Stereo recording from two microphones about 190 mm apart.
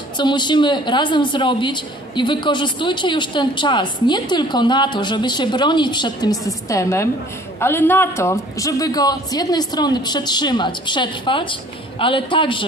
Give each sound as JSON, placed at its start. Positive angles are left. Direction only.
{"t": 0.2, "sound": "a woman's voice", "side_deg": 25}